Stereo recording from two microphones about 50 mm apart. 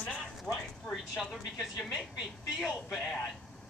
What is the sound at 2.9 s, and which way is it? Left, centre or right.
Speech, centre.